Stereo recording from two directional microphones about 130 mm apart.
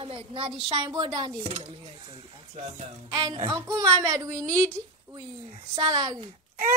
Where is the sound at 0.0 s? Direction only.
45° right (ahead or behind).